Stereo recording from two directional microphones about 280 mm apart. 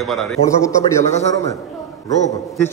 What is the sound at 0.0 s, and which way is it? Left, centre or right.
Speech, centre.